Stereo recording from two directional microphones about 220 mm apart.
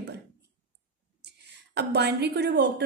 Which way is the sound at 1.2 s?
50° right (ahead or behind).